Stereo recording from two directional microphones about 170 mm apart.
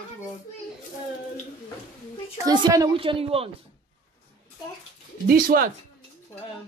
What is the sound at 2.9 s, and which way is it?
Speech, 35° right (ahead or behind).